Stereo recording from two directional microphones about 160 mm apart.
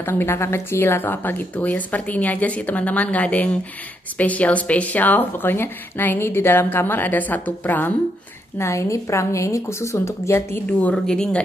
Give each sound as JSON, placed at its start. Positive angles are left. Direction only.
{"t": 0.0, "sound": "a woman's voice", "side_deg": 15}